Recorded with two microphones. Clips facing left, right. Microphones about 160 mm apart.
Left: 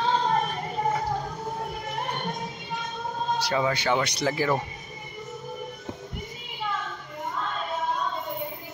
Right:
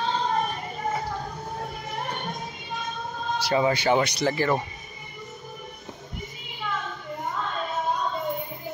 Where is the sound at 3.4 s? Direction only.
5° right (ahead or behind).